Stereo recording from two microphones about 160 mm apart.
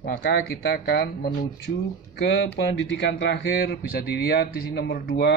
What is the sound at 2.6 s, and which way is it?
Speech, 90° left.